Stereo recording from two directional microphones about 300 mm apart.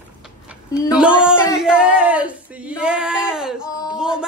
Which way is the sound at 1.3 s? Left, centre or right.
Centre.